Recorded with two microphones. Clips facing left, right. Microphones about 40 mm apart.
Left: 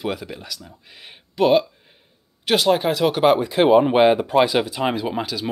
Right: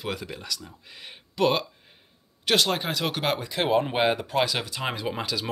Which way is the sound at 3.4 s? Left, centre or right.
Centre.